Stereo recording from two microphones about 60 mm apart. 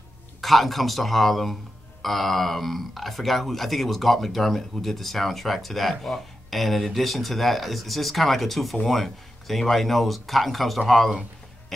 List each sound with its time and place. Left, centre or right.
0.4 s a man's voice: centre